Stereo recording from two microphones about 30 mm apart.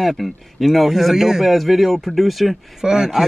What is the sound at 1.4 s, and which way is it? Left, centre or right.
Speech, centre.